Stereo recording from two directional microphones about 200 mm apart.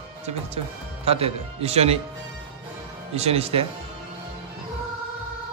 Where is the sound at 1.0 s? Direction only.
30° right (ahead or behind).